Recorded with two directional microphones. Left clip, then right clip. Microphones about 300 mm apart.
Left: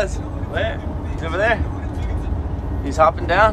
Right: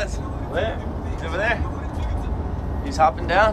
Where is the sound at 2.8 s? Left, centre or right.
Centre.